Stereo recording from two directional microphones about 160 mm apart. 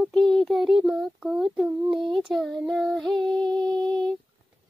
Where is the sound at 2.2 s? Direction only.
Centre (ahead or behind).